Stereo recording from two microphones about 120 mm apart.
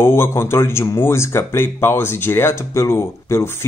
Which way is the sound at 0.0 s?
20° left (ahead or behind).